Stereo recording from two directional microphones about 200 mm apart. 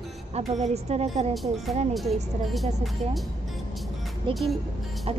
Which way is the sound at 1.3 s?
Centre (ahead or behind).